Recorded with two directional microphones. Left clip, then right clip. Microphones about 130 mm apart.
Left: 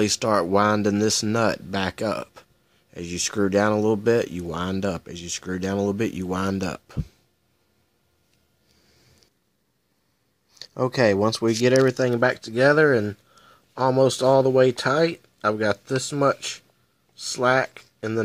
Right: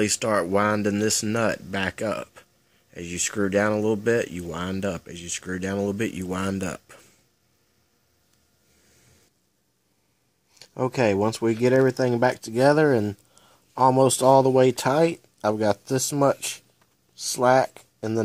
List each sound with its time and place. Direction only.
0.0 s speech: 15° left (ahead or behind)
10.8 s speech: 5° left (ahead or behind)
12.1 s speech: 25° right (ahead or behind)
12.8 s speech: 45° right (ahead or behind)
13.4 s speech: 25° right (ahead or behind)
17.4 s speech: 35° right (ahead or behind)